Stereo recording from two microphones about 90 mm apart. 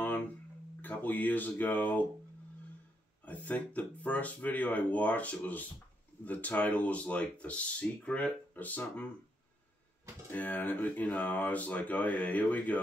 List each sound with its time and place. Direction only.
0.8 s speech: 20° left (ahead or behind)
3.3 s speech: 15° left (ahead or behind)
10.3 s speech: 20° left (ahead or behind)